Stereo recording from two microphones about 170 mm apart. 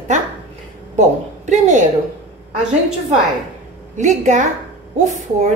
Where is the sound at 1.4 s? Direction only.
45° right (ahead or behind).